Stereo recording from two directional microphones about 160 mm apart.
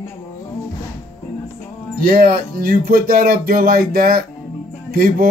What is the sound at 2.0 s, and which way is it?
Speech, 65° right (ahead or behind).